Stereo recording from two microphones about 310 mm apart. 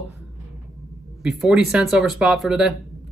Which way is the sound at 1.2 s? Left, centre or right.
Centre.